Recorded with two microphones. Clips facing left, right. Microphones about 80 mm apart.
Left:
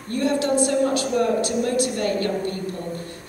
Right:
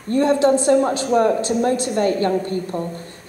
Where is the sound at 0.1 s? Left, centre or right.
Right.